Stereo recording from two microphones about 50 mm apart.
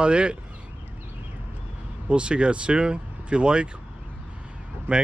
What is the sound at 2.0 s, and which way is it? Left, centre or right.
Speech, right.